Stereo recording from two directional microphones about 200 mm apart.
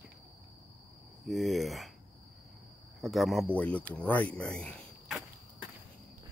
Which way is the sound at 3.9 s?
10° left (ahead or behind).